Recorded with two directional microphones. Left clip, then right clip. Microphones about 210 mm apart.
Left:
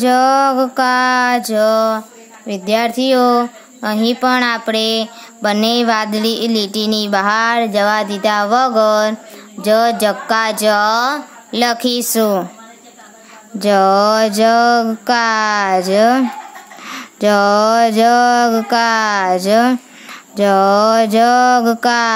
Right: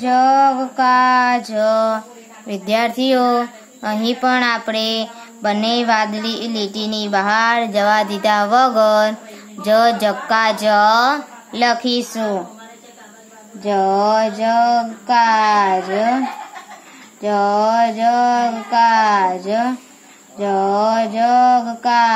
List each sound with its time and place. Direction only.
0.0 s mantra: 40° left (ahead or behind)
13.6 s speech: 50° left (ahead or behind)
17.2 s speech: 50° left (ahead or behind)